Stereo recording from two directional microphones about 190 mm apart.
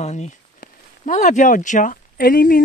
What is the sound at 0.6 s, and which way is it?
Speech, 45° left (ahead or behind).